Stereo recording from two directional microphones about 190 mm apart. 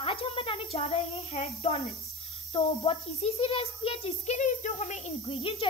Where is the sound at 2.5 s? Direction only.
30° left (ahead or behind).